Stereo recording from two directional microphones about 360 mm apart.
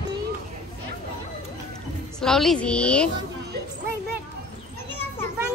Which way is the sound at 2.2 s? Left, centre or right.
Centre.